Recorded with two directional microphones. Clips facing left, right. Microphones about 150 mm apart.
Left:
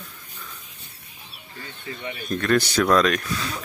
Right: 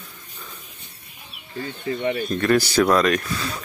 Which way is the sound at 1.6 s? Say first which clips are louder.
Right 10 dB; 40° right (ahead or behind).